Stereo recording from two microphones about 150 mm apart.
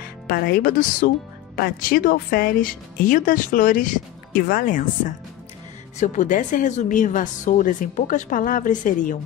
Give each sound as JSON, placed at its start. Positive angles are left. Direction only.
{"t": 0.3, "sound": "speech", "side_deg": 85}
{"t": 5.9, "sound": "a woman's voice", "side_deg": 55}